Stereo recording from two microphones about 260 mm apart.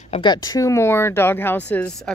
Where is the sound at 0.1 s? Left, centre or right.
Centre.